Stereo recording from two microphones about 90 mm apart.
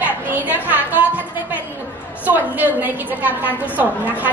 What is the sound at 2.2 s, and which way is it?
A woman's voice, 20° right (ahead or behind).